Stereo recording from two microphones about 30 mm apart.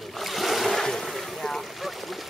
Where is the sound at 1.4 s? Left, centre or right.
Centre.